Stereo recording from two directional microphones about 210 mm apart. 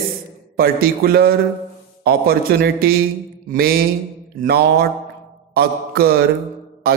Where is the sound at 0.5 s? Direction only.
45° right (ahead or behind).